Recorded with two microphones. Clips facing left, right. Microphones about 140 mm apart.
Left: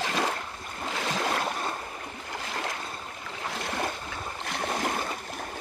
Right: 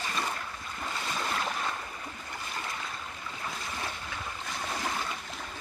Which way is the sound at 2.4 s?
90° left.